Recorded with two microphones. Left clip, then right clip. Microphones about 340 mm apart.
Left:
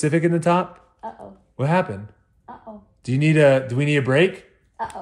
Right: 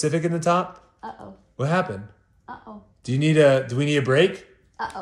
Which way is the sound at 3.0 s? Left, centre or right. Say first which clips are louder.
Left 1 dB; left.